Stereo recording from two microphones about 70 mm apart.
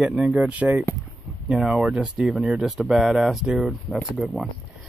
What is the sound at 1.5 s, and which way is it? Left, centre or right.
Speech, centre.